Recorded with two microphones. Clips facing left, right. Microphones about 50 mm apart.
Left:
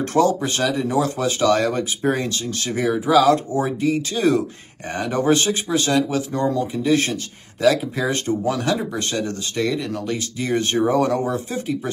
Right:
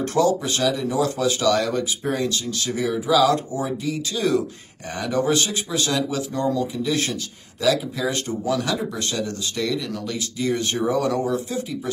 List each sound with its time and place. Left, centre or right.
0.1 s speech: left